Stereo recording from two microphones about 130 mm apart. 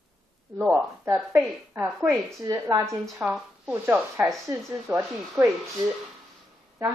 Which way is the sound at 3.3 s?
5° right (ahead or behind).